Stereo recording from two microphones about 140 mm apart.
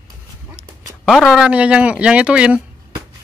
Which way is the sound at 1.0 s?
Centre (ahead or behind).